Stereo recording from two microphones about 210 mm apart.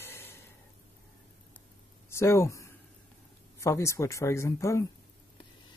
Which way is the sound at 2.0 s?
10° left (ahead or behind).